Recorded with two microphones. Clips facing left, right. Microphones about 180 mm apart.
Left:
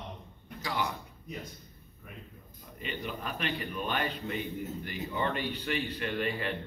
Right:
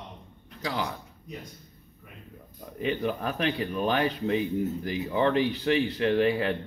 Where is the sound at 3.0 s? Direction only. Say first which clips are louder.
Right 8 dB; 65° right (ahead or behind).